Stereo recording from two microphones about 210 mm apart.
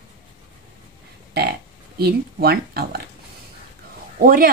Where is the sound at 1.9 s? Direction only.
50° right (ahead or behind).